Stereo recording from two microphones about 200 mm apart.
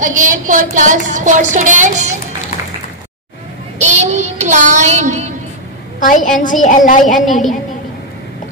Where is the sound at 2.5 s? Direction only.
35° left (ahead or behind).